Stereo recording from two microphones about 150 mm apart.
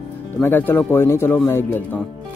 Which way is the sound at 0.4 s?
15° left (ahead or behind).